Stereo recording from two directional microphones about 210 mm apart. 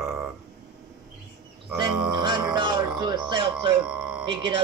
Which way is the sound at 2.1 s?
20° right (ahead or behind).